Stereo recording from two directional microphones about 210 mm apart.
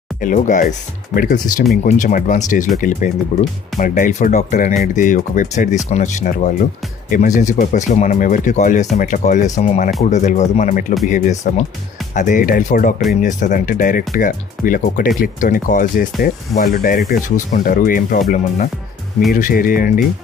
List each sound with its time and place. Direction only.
0.2 s speech: 40° left (ahead or behind)
19.3 s speech: 40° left (ahead or behind)